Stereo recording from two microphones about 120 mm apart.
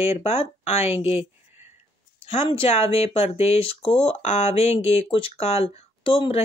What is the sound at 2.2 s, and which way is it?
Speech, 50° left (ahead or behind).